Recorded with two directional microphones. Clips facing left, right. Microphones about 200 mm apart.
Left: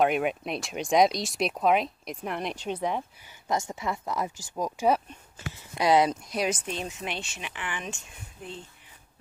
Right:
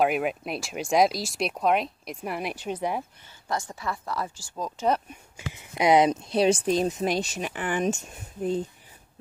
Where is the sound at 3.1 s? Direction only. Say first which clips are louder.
Left 2 dB; 15° left (ahead or behind).